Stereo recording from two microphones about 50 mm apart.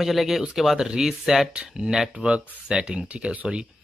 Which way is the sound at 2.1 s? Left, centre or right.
Right.